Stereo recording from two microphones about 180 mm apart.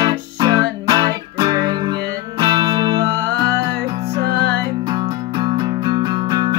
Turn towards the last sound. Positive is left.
turn(degrees=-25)  # may be behind; listen again after turning